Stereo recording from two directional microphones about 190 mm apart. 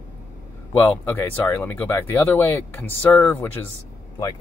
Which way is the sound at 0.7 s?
10° left (ahead or behind).